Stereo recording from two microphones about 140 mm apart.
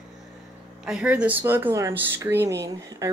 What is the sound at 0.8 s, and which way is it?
Speech, 10° right (ahead or behind).